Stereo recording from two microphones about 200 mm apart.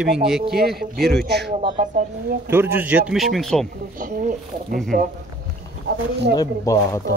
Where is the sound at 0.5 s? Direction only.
50° right (ahead or behind).